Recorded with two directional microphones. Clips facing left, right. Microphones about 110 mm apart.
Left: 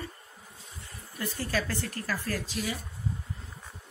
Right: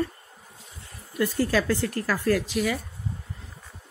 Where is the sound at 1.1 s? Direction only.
90° right.